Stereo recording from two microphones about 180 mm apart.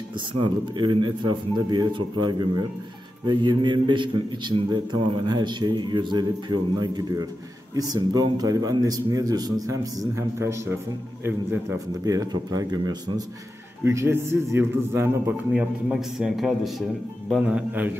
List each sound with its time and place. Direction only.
0.3 s a man's voice: 25° right (ahead or behind); by 17.9 s 5° right (ahead or behind)